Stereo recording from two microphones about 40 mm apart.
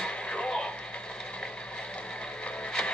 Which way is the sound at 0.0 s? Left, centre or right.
Left.